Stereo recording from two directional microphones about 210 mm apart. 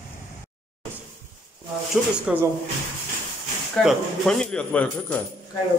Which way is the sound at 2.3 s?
5° right (ahead or behind).